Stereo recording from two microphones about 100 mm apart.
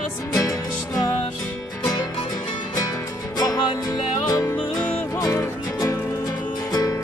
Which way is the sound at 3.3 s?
40° left (ahead or behind).